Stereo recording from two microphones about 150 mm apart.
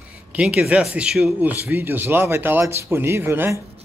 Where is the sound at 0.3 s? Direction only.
5° right (ahead or behind).